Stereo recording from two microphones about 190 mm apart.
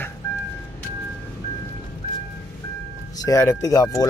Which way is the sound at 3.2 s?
15° left (ahead or behind).